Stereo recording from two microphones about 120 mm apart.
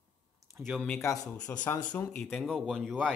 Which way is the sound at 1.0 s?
25° left (ahead or behind).